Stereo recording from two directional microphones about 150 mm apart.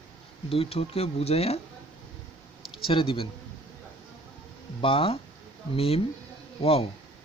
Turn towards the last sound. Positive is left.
turn(degrees=40)  # may be behind; listen again after turning